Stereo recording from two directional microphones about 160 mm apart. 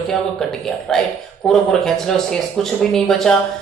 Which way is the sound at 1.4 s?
5° left (ahead or behind).